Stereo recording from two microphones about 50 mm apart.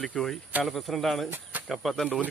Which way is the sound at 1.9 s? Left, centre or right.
Centre.